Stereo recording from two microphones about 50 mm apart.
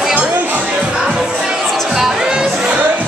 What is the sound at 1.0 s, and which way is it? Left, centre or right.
Music, centre.